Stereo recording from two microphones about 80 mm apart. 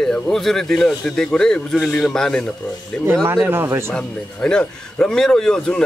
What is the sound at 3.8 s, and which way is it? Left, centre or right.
A man's voice, centre.